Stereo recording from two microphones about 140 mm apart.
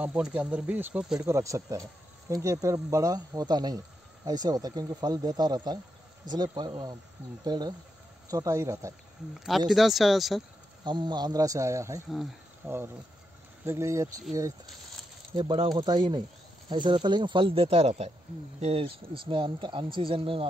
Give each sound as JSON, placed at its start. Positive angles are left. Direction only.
{"t": 0.0, "sound": "speech", "side_deg": -10}
{"t": 1.2, "sound": "speech", "side_deg": -20}
{"t": 9.3, "sound": "speech", "side_deg": 0}
{"t": 10.8, "sound": "speech", "side_deg": -30}
{"t": 15.3, "sound": "speech", "side_deg": -35}